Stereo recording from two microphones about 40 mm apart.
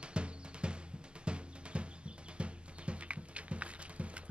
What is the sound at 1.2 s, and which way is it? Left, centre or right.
Music, right.